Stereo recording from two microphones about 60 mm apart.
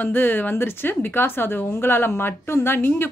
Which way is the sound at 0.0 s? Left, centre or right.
Left.